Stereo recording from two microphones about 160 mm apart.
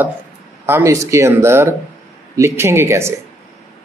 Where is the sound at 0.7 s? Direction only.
15° right (ahead or behind).